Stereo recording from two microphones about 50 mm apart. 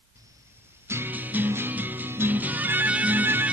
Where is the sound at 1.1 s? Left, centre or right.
Right.